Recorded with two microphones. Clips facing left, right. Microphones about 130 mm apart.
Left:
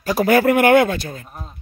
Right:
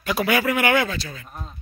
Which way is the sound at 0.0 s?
40° left (ahead or behind).